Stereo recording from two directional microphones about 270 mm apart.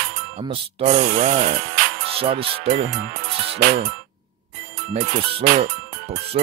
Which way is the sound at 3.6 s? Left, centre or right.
Right.